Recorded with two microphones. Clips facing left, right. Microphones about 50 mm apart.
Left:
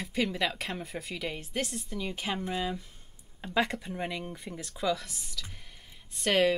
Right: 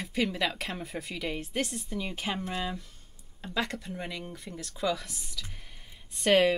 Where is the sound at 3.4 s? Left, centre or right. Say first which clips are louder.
Left 3 dB; centre.